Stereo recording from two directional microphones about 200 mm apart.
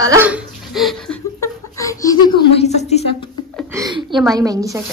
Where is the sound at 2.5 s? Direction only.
30° left (ahead or behind).